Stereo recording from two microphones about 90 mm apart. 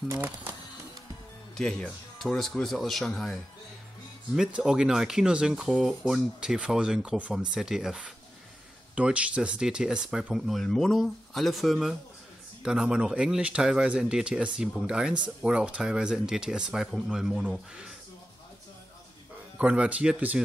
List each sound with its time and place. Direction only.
0.1 s speech: 25° right (ahead or behind)
1.6 s speech: 5° left (ahead or behind)
4.4 s speech: 10° right (ahead or behind)
19.6 s speech: 15° right (ahead or behind)